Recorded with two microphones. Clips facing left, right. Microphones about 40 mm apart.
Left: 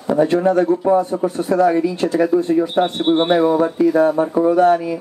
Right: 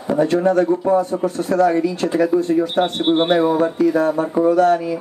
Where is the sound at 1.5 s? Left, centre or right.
Centre.